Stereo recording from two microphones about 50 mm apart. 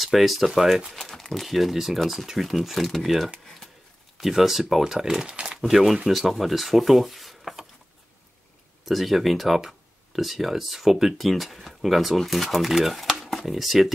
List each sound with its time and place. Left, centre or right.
0.0 s speech: centre
5.3 s a sound: centre
5.6 s speech: centre
8.8 s speech: centre